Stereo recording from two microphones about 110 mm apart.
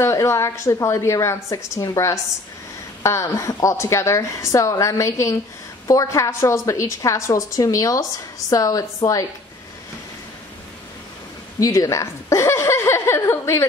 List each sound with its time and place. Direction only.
0.0 s a woman's voice: 25° left (ahead or behind)
11.6 s a woman's voice: 30° left (ahead or behind)